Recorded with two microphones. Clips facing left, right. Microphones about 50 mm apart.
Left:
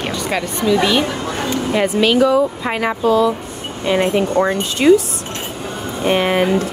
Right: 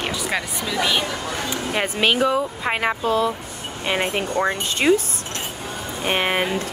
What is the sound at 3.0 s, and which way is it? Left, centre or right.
Speech, left.